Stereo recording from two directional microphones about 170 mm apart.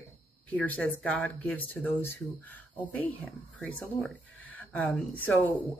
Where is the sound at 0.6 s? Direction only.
10° left (ahead or behind).